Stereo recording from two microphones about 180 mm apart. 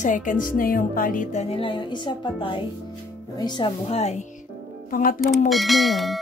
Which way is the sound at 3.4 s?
30° left (ahead or behind).